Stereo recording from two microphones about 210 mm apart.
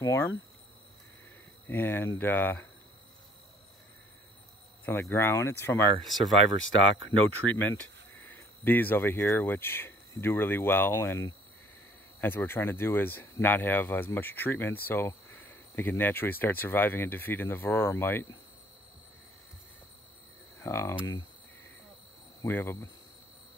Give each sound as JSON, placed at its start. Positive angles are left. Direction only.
{"t": 0.0, "sound": "speech", "side_deg": 15}
{"t": 1.7, "sound": "speech", "side_deg": 10}
{"t": 5.1, "sound": "speech", "side_deg": 10}
{"t": 6.0, "sound": "speech", "side_deg": 0}
{"t": 6.6, "sound": "speech", "side_deg": 70}
{"t": 7.5, "sound": "speech", "side_deg": 10}
{"t": 20.6, "sound": "cricket", "side_deg": 15}
{"t": 22.4, "sound": "speech", "side_deg": 10}